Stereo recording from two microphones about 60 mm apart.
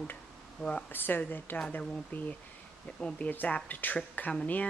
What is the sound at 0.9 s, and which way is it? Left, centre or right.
Speech, left.